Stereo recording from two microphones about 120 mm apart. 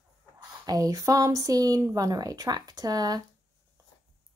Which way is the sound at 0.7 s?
30° right (ahead or behind).